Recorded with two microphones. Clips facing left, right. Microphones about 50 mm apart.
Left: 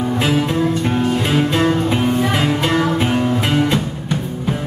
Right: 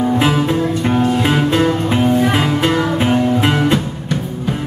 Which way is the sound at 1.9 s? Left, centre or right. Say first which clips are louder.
Right 3 dB; centre.